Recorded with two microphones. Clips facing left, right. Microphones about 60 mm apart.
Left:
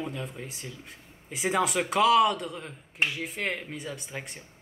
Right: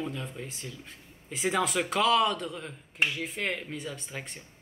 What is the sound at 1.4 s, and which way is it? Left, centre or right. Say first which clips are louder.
Speech: left 1 dB; centre.